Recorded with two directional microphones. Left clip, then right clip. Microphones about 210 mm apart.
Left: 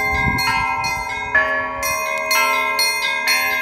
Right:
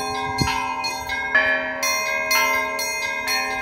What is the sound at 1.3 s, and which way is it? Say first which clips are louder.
Bell: left 2 dB; 5° right (ahead or behind).